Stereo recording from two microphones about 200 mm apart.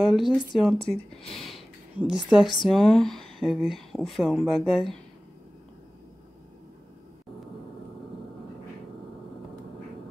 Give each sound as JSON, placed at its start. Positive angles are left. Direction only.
{"t": 0.0, "sound": "speech", "side_deg": 0}
{"t": 1.3, "sound": "a sound", "side_deg": 0}
{"t": 2.7, "sound": "speech", "side_deg": 0}